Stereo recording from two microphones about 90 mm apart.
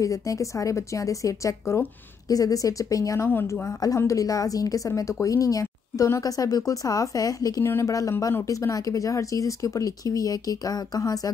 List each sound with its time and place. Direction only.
0.0 s a woman's voice: 35° left (ahead or behind)